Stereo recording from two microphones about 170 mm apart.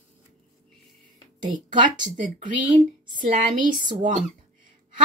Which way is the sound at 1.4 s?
50° right (ahead or behind).